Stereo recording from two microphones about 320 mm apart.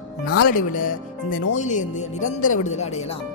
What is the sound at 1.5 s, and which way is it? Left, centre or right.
Speech, left.